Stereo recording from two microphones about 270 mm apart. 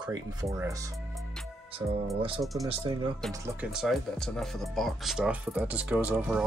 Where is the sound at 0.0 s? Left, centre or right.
Centre.